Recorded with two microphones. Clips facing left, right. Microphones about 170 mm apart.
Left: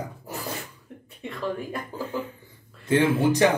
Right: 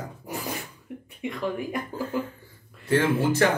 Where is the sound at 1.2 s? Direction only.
15° right (ahead or behind).